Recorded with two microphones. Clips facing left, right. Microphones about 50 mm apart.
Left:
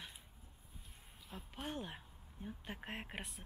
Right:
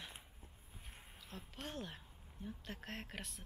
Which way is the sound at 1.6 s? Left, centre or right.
Centre.